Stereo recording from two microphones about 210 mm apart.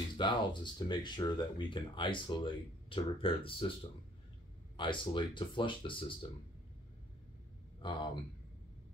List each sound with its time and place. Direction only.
0.2 s speech: 20° left (ahead or behind)
4.7 s speech: 25° left (ahead or behind)
7.8 s speech: 20° left (ahead or behind)